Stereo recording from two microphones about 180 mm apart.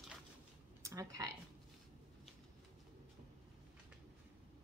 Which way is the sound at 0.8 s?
20° right (ahead or behind).